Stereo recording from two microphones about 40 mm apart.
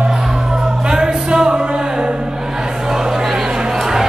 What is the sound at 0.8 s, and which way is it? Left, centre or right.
Music, centre.